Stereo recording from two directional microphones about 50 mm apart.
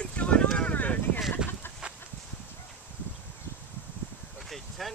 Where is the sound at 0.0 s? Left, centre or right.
Left.